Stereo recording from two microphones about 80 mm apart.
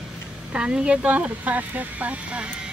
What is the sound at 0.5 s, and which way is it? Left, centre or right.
Speech, centre.